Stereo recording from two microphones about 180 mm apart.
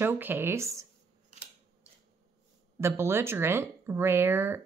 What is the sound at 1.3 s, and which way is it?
Scissors, 40° right (ahead or behind).